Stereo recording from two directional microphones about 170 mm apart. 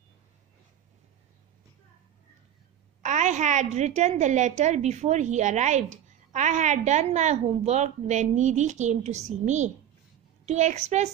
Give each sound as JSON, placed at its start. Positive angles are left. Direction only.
{"t": 3.0, "sound": "a woman's voice", "side_deg": -45}